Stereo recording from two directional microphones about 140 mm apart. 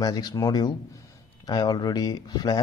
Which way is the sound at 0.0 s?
30° left (ahead or behind).